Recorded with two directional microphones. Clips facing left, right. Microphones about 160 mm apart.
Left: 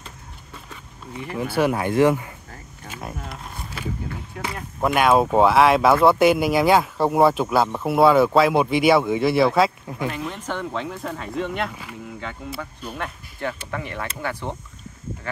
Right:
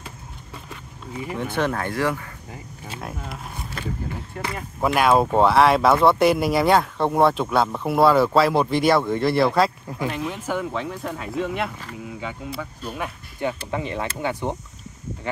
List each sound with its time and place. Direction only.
1.2 s speech: 5° left (ahead or behind); by 2.3 s 20° left (ahead or behind)
3.0 s speech: centre (ahead or behind)
13.7 s speech: 20° right (ahead or behind)